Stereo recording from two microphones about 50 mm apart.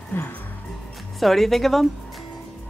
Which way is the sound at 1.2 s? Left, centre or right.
Centre.